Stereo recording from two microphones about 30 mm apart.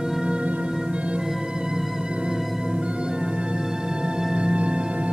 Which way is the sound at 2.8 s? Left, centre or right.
Right.